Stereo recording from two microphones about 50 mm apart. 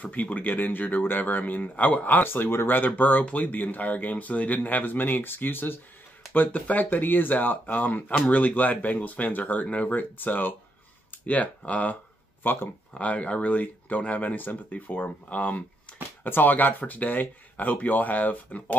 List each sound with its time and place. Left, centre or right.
0.0 s speech: left
12.9 s speech: left
15.9 s a sound: left
16.3 s speech: left